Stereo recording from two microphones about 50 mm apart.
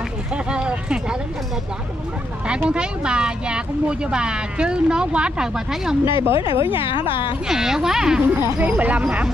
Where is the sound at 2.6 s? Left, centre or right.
Right.